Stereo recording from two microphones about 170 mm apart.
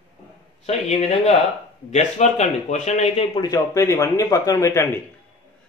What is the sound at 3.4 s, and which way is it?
Speech, 20° left (ahead or behind).